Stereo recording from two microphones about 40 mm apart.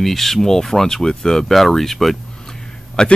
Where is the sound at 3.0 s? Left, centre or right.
Centre.